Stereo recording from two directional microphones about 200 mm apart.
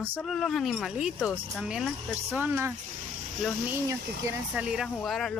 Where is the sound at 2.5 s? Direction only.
10° right (ahead or behind).